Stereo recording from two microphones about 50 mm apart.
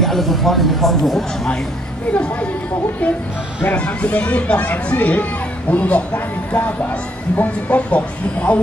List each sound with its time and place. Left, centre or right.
0.0 s speech: centre
2.1 s speech: left
3.7 s speech: left